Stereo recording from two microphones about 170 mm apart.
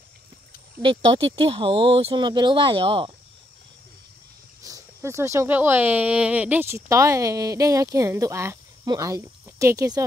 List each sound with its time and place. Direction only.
0.8 s speech: 35° right (ahead or behind)
4.6 s speech: 20° right (ahead or behind)